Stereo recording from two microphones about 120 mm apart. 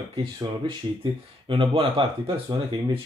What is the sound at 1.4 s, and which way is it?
Speech, 45° right (ahead or behind).